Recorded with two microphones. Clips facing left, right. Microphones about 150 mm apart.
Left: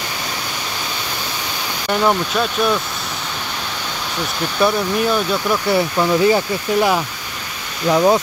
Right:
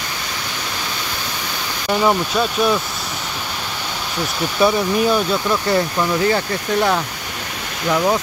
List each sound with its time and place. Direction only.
1.9 s speech: centre (ahead or behind)
4.6 s speech: centre (ahead or behind); by 8.2 s 20° left (ahead or behind)